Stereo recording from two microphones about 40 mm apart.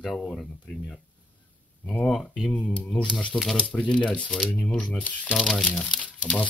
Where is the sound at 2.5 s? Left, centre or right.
Left.